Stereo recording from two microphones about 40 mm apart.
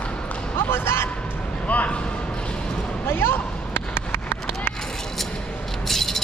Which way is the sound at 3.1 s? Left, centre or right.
Left.